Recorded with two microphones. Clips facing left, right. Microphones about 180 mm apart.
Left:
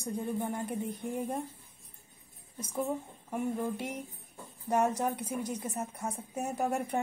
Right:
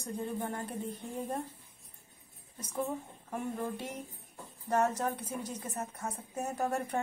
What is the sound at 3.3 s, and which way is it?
Speech, 15° left (ahead or behind).